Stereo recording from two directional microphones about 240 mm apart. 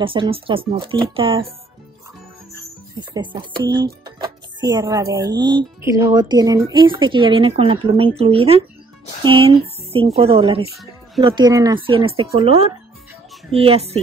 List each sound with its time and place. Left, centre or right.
0.0 s a woman's voice: right
3.0 s a woman's voice: centre